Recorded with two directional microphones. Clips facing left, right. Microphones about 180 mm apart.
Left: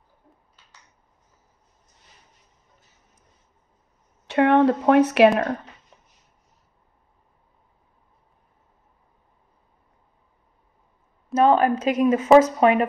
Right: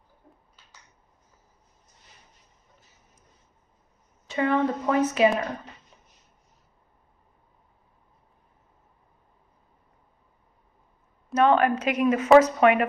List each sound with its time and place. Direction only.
4.3 s speech: 70° left (ahead or behind)
11.3 s a woman's voice: 35° left (ahead or behind)